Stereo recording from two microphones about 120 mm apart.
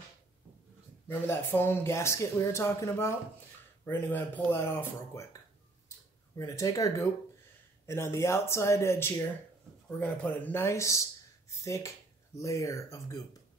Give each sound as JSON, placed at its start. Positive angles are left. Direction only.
{"t": 1.0, "sound": "speech", "side_deg": 20}
{"t": 6.3, "sound": "speech", "side_deg": 25}
{"t": 9.8, "sound": "speech", "side_deg": 10}